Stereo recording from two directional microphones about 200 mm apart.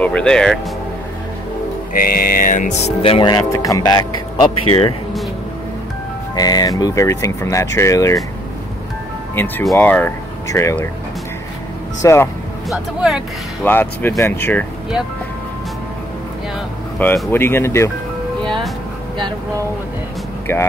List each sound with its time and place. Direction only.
0.0 s speech: 5° left (ahead or behind)
2.0 s speech: 45° left (ahead or behind); by 4.9 s 25° left (ahead or behind)
6.3 s speech: 20° left (ahead or behind)
9.3 s speech: 10° left (ahead or behind)
12.0 s speech: 15° left (ahead or behind)
12.6 s speech: centre (ahead or behind)
13.7 s speech: 10° left (ahead or behind)
17.0 s speech: 10° left (ahead or behind)
20.5 s speech: 10° left (ahead or behind)